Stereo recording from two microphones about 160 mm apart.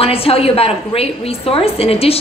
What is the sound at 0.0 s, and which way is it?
A woman's voice, 35° left (ahead or behind).